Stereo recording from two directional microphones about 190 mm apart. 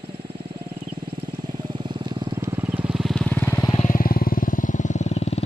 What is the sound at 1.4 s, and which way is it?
Wild animals, 25° right (ahead or behind).